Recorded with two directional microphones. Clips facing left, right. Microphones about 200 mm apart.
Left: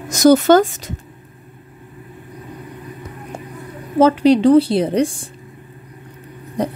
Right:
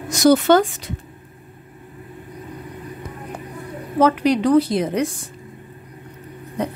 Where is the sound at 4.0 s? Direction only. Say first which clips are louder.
Left 5 dB; 30° left (ahead or behind).